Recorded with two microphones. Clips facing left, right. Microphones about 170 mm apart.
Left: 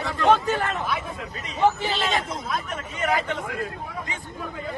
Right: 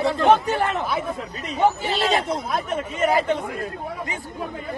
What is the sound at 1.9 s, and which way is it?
A man's voice, 35° right (ahead or behind).